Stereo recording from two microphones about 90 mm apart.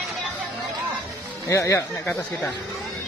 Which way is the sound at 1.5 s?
35° left (ahead or behind).